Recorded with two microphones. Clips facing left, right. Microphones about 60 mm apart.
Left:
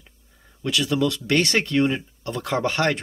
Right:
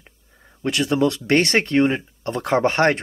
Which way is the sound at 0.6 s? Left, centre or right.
Right.